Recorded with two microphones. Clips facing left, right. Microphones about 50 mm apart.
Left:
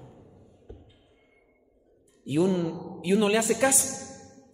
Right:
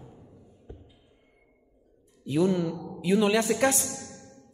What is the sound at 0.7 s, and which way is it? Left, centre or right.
Music, right.